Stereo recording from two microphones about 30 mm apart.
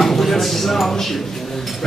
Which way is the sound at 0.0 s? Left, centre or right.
Centre.